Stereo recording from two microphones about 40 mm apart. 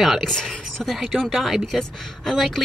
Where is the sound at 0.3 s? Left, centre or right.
Centre.